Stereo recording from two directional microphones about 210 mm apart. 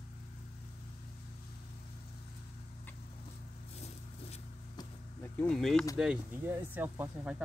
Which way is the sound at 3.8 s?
30° left (ahead or behind).